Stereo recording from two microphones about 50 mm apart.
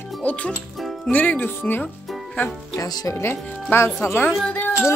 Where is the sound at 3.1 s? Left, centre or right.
Left.